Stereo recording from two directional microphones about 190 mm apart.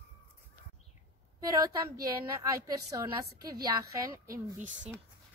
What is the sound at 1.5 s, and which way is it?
A woman's voice, 20° right (ahead or behind).